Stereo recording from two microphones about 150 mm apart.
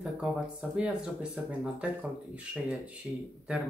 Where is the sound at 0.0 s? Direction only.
5° right (ahead or behind).